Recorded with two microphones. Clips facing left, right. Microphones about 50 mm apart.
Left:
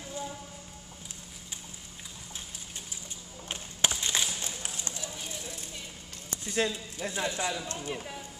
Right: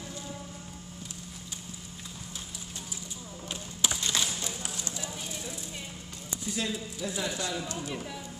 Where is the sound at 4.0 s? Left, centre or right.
Left.